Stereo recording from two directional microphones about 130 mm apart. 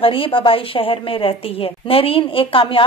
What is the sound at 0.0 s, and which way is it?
A woman's voice, 45° left (ahead or behind).